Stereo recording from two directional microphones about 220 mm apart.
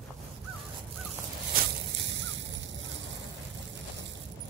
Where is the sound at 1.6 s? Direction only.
55° right (ahead or behind).